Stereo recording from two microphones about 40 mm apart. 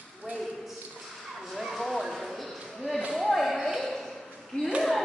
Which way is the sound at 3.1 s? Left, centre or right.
Centre.